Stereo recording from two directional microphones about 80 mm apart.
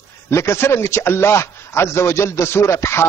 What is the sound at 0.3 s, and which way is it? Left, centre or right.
A man's voice, left.